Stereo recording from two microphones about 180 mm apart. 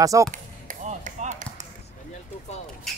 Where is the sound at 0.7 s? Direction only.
45° right (ahead or behind).